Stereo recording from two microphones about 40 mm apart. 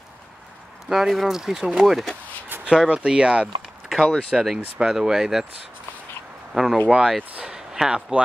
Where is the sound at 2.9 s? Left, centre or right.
Right.